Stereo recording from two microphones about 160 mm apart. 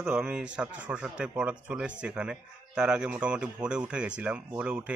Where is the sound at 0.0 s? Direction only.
5° right (ahead or behind).